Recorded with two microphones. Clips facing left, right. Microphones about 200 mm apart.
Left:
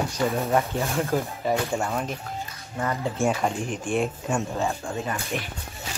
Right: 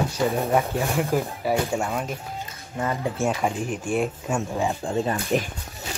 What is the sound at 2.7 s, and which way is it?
Speech, 15° right (ahead or behind).